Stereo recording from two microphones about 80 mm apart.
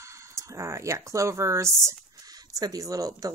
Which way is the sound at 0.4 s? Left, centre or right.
Right.